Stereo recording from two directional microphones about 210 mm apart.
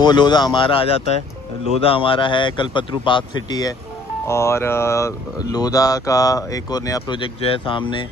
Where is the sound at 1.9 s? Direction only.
25° left (ahead or behind).